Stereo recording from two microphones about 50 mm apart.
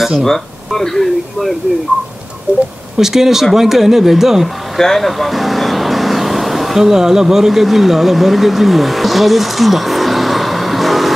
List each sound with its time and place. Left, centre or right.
0.0 s speech: centre
2.5 s speech: right
3.0 s speech: centre
4.7 s speech: centre